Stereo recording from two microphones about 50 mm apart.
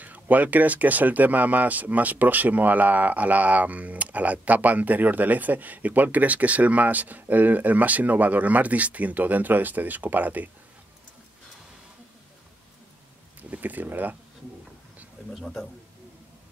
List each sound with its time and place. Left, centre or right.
0.0 s speech: right
13.4 s speech: right
15.3 s a man's voice: centre